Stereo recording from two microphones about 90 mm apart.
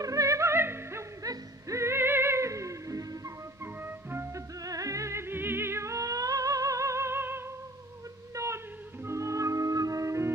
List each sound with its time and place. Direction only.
0.0 s music: 40° right (ahead or behind)
1.2 s music: 40° right (ahead or behind)
3.8 s music: 25° right (ahead or behind)
4.6 s music: 40° right (ahead or behind)
8.4 s music: 35° right (ahead or behind)